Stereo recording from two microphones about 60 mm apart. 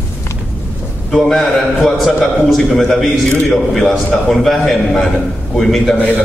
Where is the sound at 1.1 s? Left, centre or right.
Centre.